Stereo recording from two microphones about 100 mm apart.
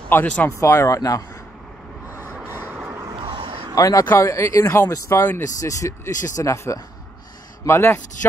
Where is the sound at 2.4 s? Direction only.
20° right (ahead or behind).